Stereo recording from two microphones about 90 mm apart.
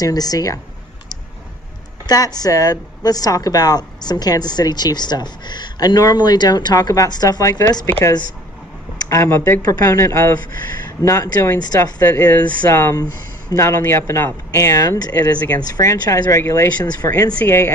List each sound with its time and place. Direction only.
0.0 s a woman's voice: 45° left (ahead or behind)
2.0 s a woman's voice: 45° left (ahead or behind)
9.1 s a woman's voice: 35° left (ahead or behind)
12.0 s speech: 20° left (ahead or behind)
12.6 s speech: 35° left (ahead or behind)
15.3 s speech: 20° left (ahead or behind)
15.7 s speech: 35° left (ahead or behind)